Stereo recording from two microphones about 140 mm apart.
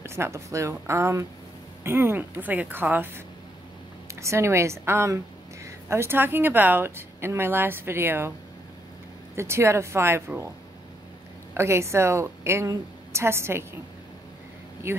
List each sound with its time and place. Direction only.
0.0 s a woman's voice: 20° right (ahead or behind)
4.1 s a woman's voice: 20° right (ahead or behind)
9.3 s a woman's voice: 20° right (ahead or behind)
11.5 s a woman's voice: 20° right (ahead or behind)
14.8 s speech: 20° right (ahead or behind)